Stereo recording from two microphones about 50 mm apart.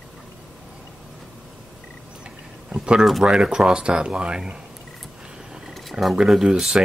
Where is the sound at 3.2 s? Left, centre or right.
Centre.